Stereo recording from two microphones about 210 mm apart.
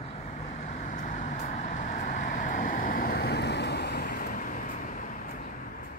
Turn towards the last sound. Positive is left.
turn(degrees=40)  # may be behind; listen again after turning